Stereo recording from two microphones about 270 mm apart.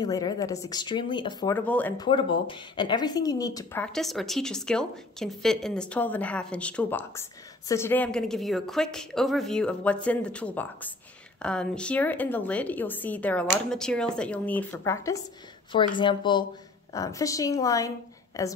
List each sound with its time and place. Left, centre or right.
0.0 s speech: centre
2.3 s speech: centre
15.7 s a woman's voice: left